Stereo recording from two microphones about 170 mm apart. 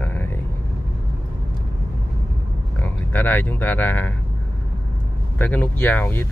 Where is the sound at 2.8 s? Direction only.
10° left (ahead or behind).